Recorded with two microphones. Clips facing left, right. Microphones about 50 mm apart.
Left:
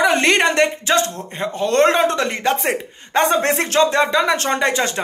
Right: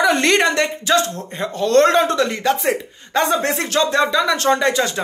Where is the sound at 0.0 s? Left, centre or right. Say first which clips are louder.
Even; left.